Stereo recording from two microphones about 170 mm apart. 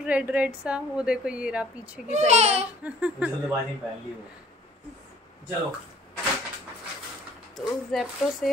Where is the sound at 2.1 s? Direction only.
40° right (ahead or behind).